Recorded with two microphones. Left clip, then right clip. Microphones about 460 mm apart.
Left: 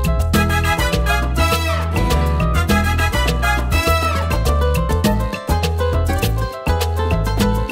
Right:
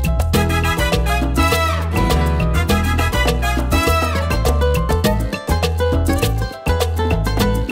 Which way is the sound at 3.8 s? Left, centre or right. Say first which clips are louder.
Left 2 dB; right.